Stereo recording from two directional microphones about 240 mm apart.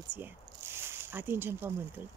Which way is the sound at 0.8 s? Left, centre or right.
Centre.